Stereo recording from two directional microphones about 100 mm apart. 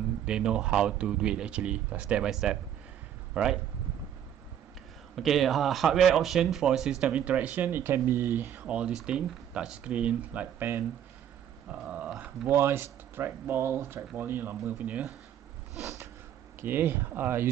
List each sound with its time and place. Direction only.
0.2 s speech: 10° right (ahead or behind)
5.1 s speech: centre (ahead or behind)
12.2 s speech: 25° right (ahead or behind)
16.6 s speech: 20° right (ahead or behind)